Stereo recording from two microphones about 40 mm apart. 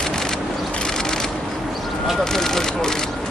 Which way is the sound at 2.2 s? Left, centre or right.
Centre.